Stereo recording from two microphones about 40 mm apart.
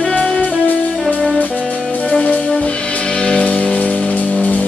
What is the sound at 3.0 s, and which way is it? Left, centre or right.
Music, centre.